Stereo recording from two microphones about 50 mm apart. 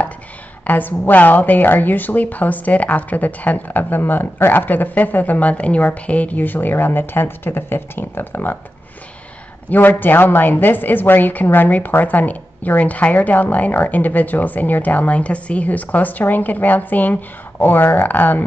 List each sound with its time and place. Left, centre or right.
0.7 s a woman's voice: left
9.7 s a woman's voice: left